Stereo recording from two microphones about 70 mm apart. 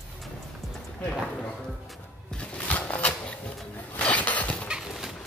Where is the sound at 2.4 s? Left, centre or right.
Left.